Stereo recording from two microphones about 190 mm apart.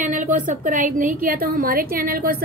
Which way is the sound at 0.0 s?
45° right (ahead or behind).